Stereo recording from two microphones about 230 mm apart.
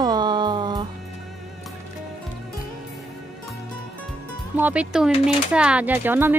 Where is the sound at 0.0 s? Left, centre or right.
Centre.